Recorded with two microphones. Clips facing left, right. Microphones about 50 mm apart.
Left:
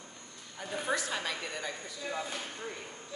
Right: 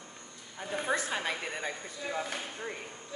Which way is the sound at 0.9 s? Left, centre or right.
Right.